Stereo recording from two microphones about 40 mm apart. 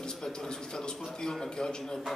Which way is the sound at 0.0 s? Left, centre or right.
Centre.